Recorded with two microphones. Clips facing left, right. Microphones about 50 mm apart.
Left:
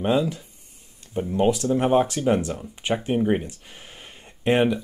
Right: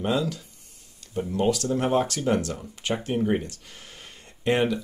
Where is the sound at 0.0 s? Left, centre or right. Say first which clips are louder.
Left 4 dB; centre.